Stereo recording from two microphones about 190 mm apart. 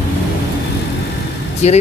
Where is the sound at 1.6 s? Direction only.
35° left (ahead or behind).